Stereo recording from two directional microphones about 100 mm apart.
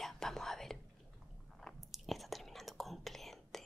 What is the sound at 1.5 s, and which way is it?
Whispering, centre (ahead or behind).